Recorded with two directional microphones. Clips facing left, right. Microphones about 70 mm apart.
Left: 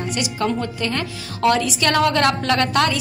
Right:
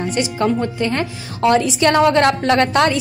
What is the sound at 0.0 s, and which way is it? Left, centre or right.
A woman's voice, right.